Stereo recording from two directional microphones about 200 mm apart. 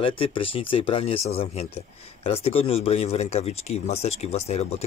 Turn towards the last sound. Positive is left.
turn(degrees=30)  # may be behind; listen again after turning